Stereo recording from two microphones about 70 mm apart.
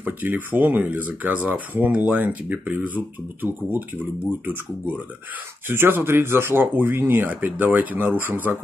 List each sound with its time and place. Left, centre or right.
0.0 s speech: right
5.7 s speech: right